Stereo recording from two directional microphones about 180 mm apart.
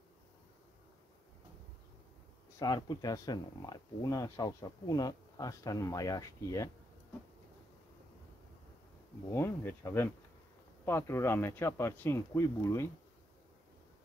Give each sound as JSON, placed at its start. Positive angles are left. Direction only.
{"t": 2.6, "sound": "speech", "side_deg": 20}
{"t": 9.3, "sound": "speech", "side_deg": 15}